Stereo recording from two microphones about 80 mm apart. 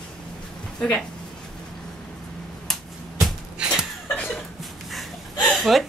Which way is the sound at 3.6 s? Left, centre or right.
Centre.